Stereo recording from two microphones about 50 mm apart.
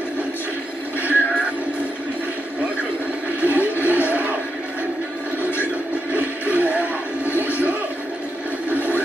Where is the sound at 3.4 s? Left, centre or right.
Right.